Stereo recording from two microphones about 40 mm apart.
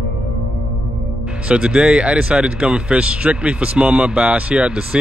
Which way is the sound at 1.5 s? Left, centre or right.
Right.